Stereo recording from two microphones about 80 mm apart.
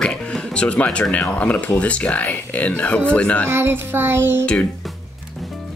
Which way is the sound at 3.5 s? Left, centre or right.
Right.